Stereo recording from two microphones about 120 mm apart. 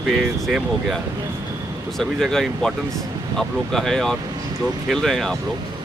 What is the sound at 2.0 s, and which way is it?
Speech, 5° left (ahead or behind).